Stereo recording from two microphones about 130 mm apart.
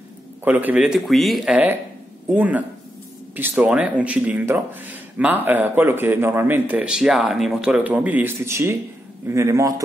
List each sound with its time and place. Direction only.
0.4 s a man's voice: 15° right (ahead or behind)